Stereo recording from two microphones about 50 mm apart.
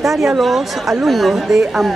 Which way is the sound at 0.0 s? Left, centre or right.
Centre.